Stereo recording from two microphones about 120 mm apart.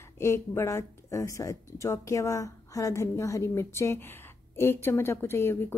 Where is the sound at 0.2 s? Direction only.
25° left (ahead or behind).